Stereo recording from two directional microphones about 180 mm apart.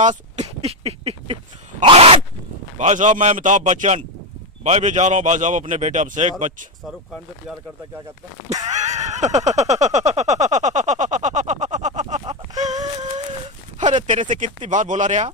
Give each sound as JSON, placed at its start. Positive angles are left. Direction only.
{"t": 0.0, "sound": "a man's voice", "side_deg": -40}
{"t": 8.6, "sound": "a sound", "side_deg": -40}
{"t": 14.2, "sound": "a man's voice", "side_deg": -45}